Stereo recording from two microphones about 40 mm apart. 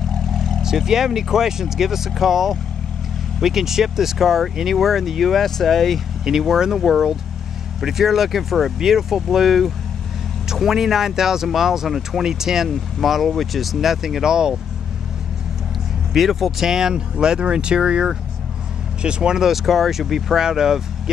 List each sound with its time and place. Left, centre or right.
0.3 s vehicle: centre
0.6 s speech: centre
6.2 s speech: centre
12.6 s speech: centre
16.1 s speech: centre
19.5 s speech: centre
20.4 s speech: centre